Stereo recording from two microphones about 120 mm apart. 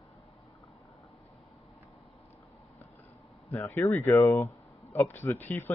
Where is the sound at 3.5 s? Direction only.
20° left (ahead or behind).